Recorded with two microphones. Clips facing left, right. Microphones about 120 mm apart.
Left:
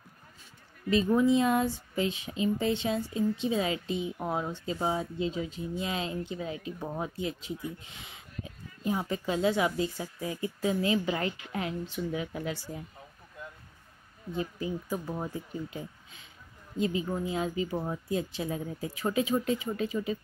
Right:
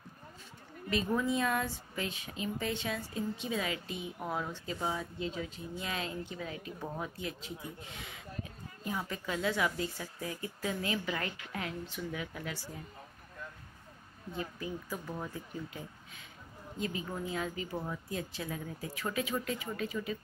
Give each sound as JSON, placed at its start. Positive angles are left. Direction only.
{"t": 0.8, "sound": "speech", "side_deg": 25}
{"t": 14.3, "sound": "speech", "side_deg": 20}
{"t": 16.8, "sound": "speech", "side_deg": 20}